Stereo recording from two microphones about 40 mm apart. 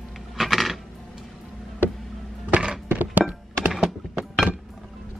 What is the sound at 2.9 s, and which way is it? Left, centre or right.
Thunk, right.